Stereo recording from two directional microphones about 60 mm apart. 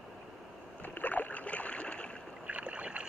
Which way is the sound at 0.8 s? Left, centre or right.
Left.